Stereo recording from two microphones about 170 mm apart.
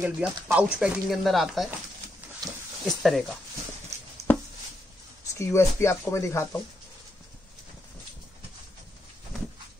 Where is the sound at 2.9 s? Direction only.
Centre (ahead or behind).